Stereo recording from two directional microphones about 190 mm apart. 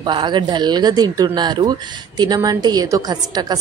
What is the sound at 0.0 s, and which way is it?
Speech, 25° right (ahead or behind).